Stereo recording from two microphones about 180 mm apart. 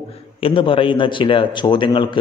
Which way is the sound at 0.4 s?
30° left (ahead or behind).